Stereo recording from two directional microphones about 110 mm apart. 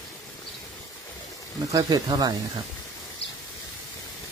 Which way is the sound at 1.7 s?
35° right (ahead or behind).